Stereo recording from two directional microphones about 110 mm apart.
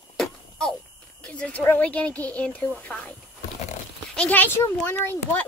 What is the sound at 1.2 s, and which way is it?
Speech, 10° left (ahead or behind).